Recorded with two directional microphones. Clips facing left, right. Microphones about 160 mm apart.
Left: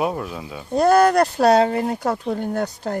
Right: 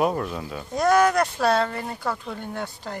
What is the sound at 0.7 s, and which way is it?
Speech, 35° left (ahead or behind).